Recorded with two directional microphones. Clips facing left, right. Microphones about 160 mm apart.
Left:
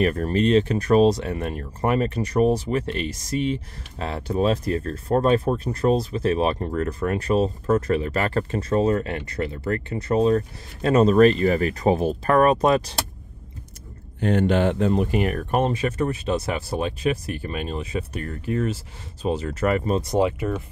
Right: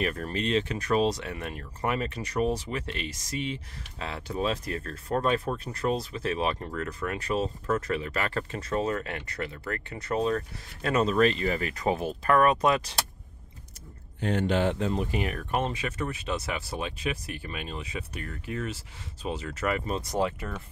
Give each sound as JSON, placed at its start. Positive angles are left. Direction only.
{"t": 0.0, "sound": "speech", "side_deg": 40}
{"t": 14.2, "sound": "speech", "side_deg": 60}
{"t": 20.0, "sound": "speech", "side_deg": 20}